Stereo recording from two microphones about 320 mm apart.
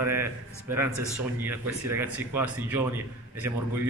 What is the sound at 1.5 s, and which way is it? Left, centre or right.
Speech, centre.